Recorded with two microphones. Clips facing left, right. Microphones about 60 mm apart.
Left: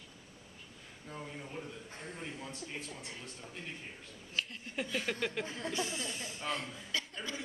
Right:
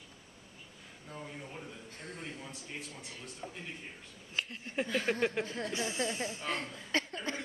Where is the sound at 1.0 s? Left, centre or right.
Centre.